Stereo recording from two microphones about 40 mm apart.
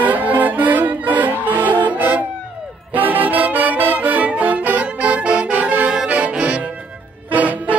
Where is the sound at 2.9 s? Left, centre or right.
Right.